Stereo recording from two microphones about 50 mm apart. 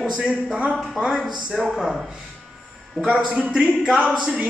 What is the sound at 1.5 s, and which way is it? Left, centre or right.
Speech, centre.